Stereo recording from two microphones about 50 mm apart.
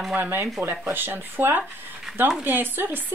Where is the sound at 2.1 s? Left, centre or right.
Centre.